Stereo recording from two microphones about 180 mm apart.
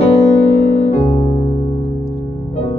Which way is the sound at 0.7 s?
35° left (ahead or behind).